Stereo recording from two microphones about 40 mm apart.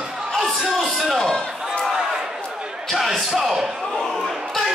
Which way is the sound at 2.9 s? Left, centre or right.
Centre.